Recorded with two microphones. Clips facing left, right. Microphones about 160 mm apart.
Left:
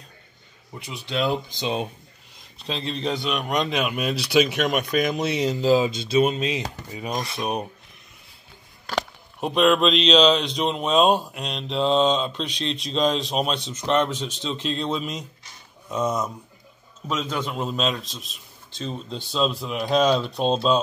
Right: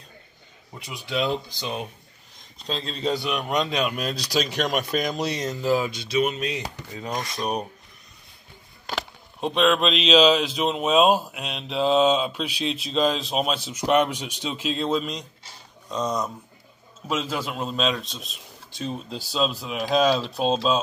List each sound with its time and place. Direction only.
1.0 s speech: centre (ahead or behind)
1.5 s speech: 25° left (ahead or behind)
2.6 s speech: centre (ahead or behind)
5.6 s speech: 25° left (ahead or behind)
6.9 s rub: 15° left (ahead or behind)
8.9 s speech: centre (ahead or behind)
17.1 s speech: 5° right (ahead or behind)
18.7 s speech: 10° right (ahead or behind)